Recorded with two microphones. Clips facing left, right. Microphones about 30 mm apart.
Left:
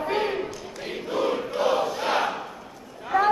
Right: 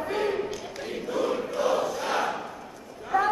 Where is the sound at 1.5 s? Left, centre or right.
Left.